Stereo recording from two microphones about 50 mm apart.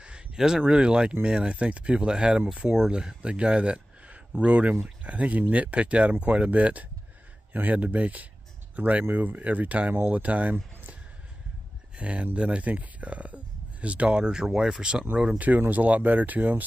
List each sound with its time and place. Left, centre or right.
0.0 s a sound: centre
0.4 s speech: centre
12.0 s speech: right
15.3 s speech: right